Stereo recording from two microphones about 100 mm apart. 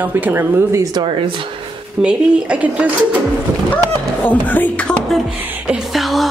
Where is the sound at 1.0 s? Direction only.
60° right (ahead or behind).